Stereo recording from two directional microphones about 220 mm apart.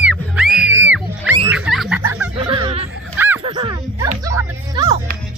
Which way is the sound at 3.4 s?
20° right (ahead or behind).